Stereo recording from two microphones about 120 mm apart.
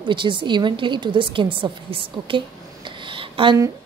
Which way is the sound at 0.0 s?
40° right (ahead or behind).